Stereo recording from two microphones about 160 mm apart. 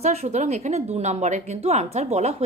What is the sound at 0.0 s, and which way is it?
A woman's voice, 45° right (ahead or behind).